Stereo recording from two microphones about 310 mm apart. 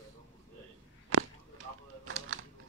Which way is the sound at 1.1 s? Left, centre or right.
Right.